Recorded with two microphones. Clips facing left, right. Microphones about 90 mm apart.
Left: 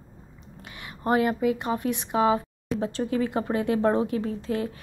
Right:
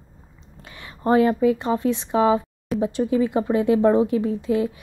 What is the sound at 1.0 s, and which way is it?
A woman's voice, 30° right (ahead or behind).